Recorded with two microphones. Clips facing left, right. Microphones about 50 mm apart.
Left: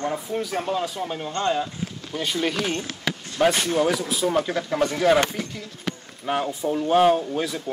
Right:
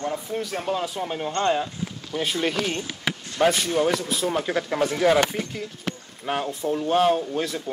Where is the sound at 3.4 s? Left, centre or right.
Centre.